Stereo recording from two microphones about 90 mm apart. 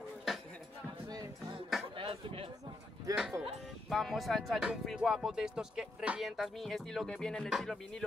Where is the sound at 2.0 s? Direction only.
80° right.